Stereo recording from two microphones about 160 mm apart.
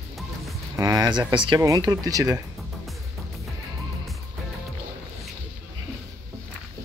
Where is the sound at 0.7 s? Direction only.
20° right (ahead or behind).